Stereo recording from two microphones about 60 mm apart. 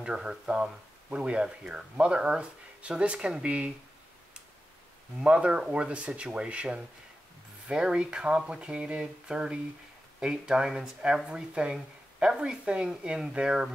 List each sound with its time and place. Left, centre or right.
0.0 s speech: centre
5.2 s speech: centre